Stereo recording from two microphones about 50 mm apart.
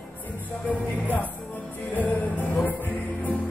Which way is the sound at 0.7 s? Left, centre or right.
Left.